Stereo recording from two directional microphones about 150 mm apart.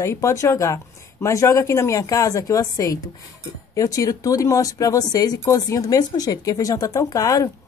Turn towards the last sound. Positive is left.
turn(degrees=25)  # may be behind; listen again after turning